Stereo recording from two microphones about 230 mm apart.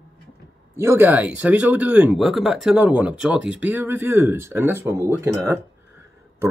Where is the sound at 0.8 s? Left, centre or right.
Centre.